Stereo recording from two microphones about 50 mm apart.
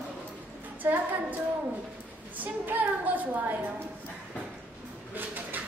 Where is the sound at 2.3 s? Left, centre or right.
Right.